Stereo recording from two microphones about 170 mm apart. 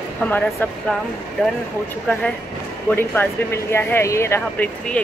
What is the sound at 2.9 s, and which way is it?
Speech, 15° left (ahead or behind).